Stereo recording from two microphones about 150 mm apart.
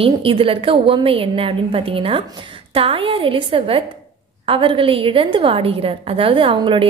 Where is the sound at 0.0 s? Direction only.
35° right (ahead or behind).